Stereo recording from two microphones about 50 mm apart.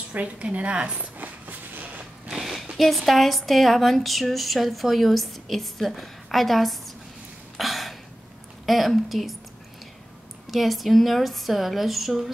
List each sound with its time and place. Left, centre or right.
0.1 s a woman's voice: right
1.1 s train: right
2.3 s a sound: centre
2.8 s speech: centre
7.5 s a sound: centre
8.6 s speech: centre
10.5 s speech: centre